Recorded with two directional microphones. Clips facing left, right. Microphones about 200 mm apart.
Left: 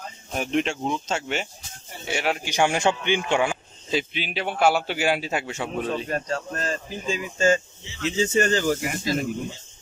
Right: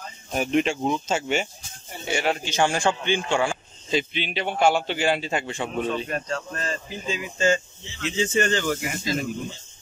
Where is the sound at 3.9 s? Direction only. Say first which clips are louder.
Right 1 dB; 5° left (ahead or behind).